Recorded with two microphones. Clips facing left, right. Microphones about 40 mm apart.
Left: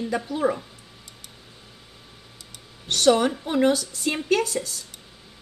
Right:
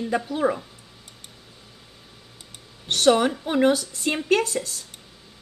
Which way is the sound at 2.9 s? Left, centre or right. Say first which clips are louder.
Even; centre.